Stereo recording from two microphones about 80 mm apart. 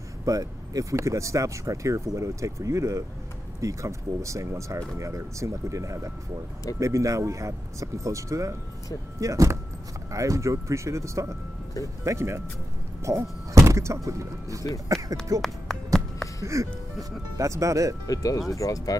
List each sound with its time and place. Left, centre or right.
0.2 s speech: right
14.9 s a sound: right
15.4 s music: centre
16.5 s speech: right
18.0 s speech: left